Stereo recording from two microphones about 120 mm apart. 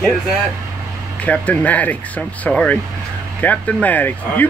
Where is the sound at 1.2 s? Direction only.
10° left (ahead or behind).